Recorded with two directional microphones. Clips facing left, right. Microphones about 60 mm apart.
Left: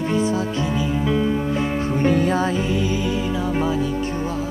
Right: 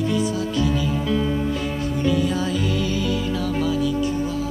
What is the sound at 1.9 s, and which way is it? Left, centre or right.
Music, left.